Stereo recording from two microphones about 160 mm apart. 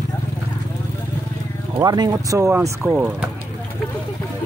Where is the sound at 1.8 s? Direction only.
25° right (ahead or behind).